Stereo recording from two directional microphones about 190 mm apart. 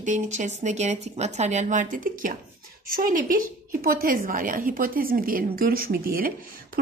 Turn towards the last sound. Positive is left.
turn(degrees=-50)  # may be behind; listen again after turning